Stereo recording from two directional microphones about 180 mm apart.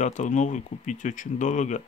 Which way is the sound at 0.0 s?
40° left (ahead or behind).